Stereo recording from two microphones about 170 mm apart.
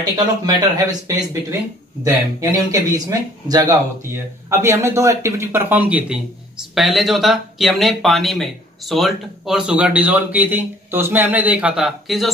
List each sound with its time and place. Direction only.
0.1 s speech: 20° right (ahead or behind); by 12.3 s centre (ahead or behind)